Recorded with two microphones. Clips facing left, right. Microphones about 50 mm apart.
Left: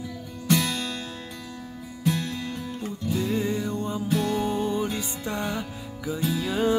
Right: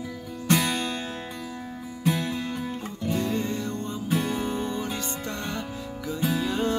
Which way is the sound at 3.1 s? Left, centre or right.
Centre.